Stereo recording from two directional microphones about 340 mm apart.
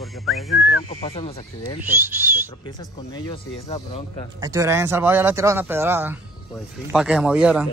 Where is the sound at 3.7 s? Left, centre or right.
Centre.